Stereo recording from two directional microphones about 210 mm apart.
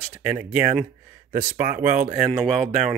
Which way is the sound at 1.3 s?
40° right (ahead or behind).